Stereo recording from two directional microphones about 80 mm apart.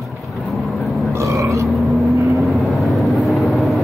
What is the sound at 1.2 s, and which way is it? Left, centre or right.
Burping, right.